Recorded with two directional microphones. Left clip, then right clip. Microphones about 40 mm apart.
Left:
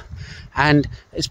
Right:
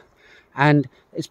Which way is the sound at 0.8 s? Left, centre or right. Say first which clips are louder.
Left 3 dB; right.